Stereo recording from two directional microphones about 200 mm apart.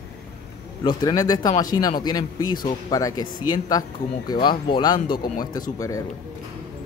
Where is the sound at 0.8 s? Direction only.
20° left (ahead or behind).